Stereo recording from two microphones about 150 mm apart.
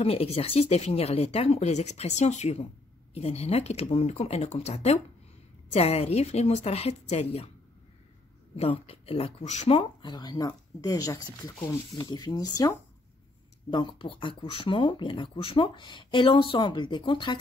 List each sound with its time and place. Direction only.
0.0 s speech: 40° left (ahead or behind)
8.5 s speech: 40° left (ahead or behind)